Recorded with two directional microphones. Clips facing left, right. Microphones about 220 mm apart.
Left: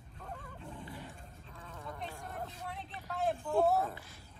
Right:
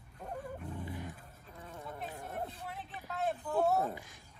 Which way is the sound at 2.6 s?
Centre (ahead or behind).